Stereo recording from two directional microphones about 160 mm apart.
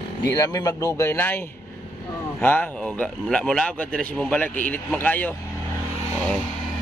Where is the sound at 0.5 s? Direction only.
20° left (ahead or behind).